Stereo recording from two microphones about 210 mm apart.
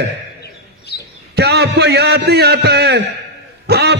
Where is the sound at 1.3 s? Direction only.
50° right (ahead or behind).